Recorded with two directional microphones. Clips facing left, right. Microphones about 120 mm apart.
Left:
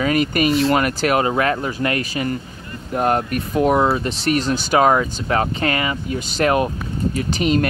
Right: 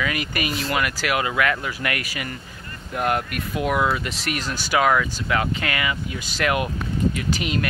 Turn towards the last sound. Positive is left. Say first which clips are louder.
# left 6 dB
turn(degrees=40)  # may be behind; listen again after turning